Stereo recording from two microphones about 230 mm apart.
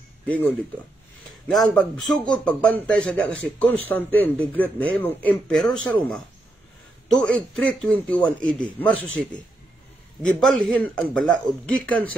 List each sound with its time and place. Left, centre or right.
0.3 s speech: centre
10.2 s speech: centre